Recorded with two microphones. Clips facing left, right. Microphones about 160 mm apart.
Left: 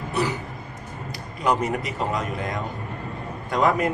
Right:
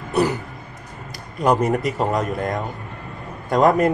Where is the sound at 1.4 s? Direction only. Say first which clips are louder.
Right 5 dB; 45° right (ahead or behind).